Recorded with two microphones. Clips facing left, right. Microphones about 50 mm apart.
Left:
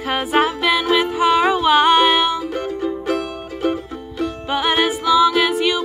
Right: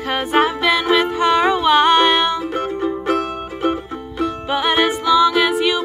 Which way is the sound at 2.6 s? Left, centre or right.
Right.